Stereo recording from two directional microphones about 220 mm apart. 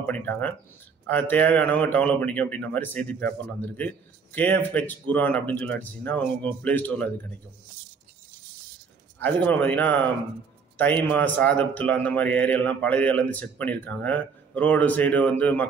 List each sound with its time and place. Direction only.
0.0 s a man's voice: 5° left (ahead or behind)
9.2 s a man's voice: 5° left (ahead or behind)